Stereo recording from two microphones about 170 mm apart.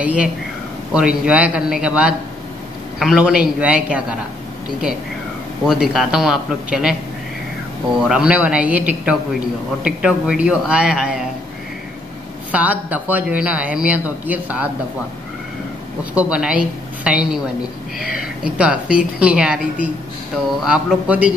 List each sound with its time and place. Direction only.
0.0 s a sound: 5° right (ahead or behind)
0.9 s speech: 5° right (ahead or behind)
5.7 s a man's voice: 5° right (ahead or behind)
8.0 s a man's voice: 5° right (ahead or behind)
12.4 s speech: 10° right (ahead or behind)
16.2 s a woman's voice: 5° right (ahead or behind)